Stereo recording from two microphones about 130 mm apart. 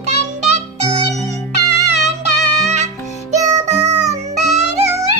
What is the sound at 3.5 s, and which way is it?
Music, 60° right (ahead or behind).